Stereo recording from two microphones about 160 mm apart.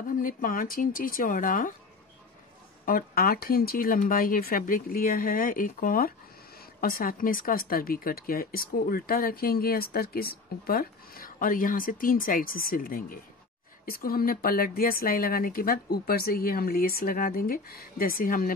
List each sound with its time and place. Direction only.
0.0 s speech: 60° left (ahead or behind)
2.8 s speech: 65° left (ahead or behind)